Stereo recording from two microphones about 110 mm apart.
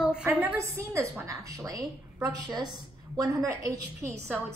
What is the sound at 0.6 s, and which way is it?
A woman's voice, 25° right (ahead or behind).